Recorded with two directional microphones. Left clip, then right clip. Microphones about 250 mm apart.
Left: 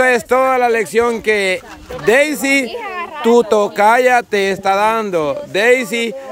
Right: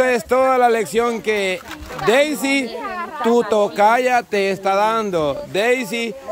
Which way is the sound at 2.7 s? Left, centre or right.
Left.